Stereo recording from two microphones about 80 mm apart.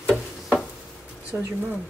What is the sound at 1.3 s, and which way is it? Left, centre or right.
Speech, right.